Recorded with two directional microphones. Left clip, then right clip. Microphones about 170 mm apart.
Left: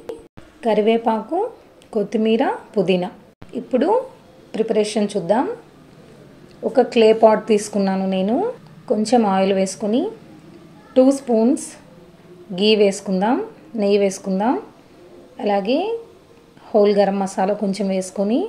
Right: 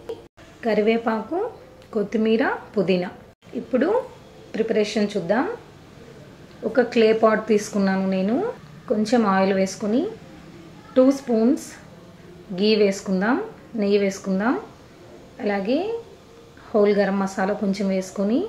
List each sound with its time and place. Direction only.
0.6 s a woman's voice: 25° left (ahead or behind)
6.7 s a woman's voice: 25° left (ahead or behind)